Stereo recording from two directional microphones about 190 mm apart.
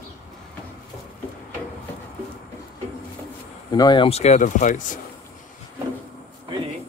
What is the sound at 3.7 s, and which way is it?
Speech, 20° left (ahead or behind).